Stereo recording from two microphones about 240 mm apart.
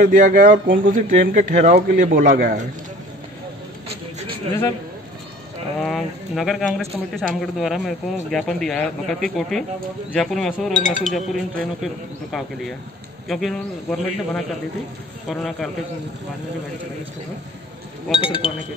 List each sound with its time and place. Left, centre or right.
0.0 s speech: right
5.8 s speech: centre
18.2 s speech: left